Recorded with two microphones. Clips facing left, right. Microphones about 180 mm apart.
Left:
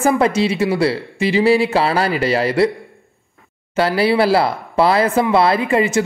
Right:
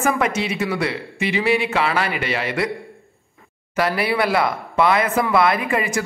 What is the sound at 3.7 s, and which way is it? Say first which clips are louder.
Speech: left 5 dB; 30° left (ahead or behind).